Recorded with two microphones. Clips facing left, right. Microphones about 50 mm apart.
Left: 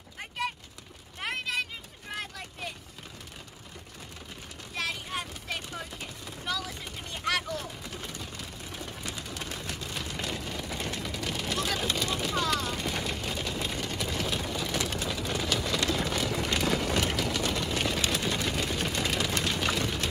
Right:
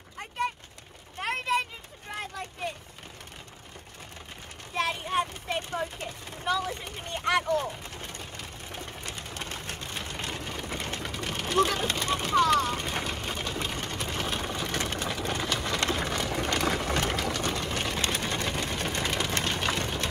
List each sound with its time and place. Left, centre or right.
1.3 s vehicle: right
4.7 s vehicle: right
7.2 s speech: right
7.5 s a sound: right
11.8 s vehicle: right